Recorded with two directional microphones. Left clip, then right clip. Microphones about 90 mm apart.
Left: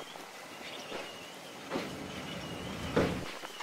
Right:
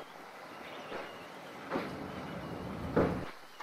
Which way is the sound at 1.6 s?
20° left (ahead or behind).